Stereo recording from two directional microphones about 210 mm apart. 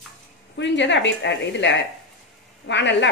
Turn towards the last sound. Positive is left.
turn(degrees=60)  # may be behind; listen again after turning